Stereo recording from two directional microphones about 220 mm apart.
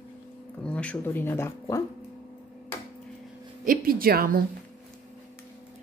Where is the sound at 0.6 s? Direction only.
5° left (ahead or behind).